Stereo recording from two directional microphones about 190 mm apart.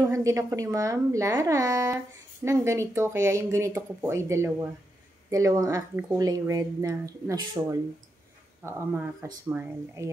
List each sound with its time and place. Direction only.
0.1 s speech: 15° right (ahead or behind)